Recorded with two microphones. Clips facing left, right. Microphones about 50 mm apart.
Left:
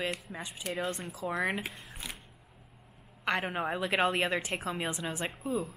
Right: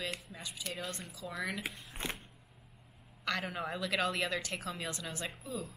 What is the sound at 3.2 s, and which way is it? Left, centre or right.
A woman's voice, left.